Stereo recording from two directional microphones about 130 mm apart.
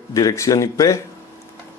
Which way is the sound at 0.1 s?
25° left (ahead or behind).